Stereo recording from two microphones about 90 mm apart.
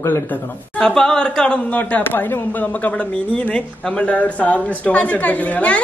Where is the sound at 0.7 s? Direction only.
5° left (ahead or behind).